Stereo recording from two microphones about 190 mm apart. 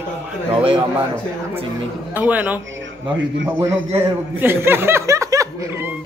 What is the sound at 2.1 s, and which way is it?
A man's voice, 10° right (ahead or behind).